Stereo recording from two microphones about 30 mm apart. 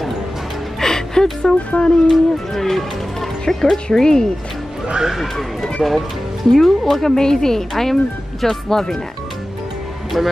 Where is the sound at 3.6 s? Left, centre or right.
Left.